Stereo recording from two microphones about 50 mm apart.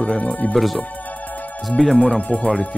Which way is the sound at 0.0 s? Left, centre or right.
Left.